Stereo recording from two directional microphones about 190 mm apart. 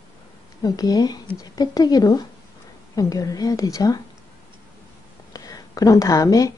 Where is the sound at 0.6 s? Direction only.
20° left (ahead or behind).